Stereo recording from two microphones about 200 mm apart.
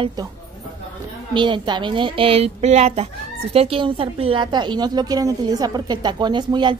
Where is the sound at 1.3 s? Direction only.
25° right (ahead or behind).